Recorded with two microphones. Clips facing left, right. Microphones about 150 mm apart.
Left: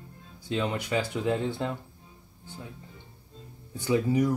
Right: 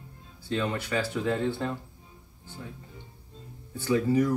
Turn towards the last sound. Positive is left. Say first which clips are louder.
# right 1 dB
turn(degrees=15)  # may be behind; listen again after turning